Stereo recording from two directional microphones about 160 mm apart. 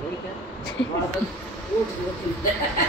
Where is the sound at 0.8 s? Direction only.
35° left (ahead or behind).